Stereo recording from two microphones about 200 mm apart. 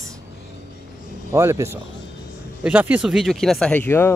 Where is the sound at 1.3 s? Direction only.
15° right (ahead or behind).